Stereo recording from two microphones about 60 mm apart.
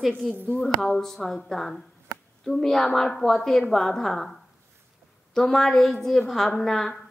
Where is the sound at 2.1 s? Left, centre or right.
Right.